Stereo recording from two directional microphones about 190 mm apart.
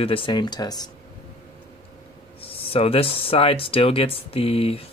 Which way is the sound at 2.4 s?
30° left (ahead or behind).